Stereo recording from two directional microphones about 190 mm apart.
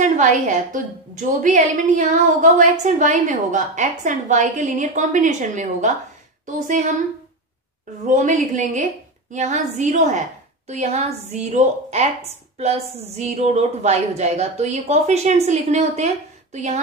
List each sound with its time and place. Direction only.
0.0 s a woman's voice: 40° right (ahead or behind)
8.1 s a woman's voice: 40° right (ahead or behind)